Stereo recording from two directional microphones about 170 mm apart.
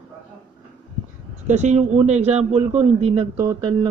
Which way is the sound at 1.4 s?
40° right (ahead or behind).